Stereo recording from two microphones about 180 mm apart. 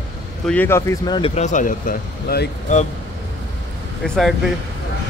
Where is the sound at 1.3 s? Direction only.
40° left (ahead or behind).